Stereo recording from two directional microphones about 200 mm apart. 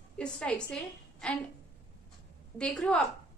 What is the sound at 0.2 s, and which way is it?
A woman's voice, 5° left (ahead or behind).